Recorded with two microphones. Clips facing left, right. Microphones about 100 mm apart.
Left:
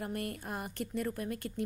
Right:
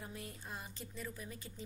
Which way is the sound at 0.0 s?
65° left (ahead or behind).